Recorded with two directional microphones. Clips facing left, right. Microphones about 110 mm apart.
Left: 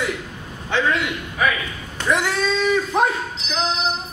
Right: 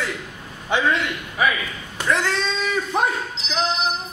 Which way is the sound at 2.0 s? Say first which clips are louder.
Left 2 dB; 15° left (ahead or behind).